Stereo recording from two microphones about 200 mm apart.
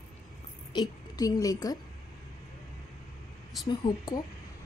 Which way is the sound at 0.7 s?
20° left (ahead or behind).